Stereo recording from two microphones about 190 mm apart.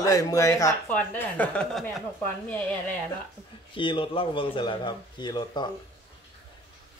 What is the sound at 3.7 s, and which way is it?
Speech, 25° left (ahead or behind).